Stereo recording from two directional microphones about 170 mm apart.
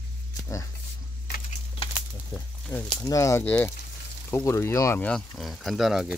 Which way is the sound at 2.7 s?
10° left (ahead or behind).